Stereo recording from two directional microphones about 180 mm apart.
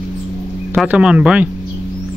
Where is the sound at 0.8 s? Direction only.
5° right (ahead or behind).